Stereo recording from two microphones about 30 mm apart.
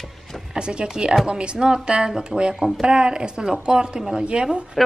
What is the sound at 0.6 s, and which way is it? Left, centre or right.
A woman's voice, right.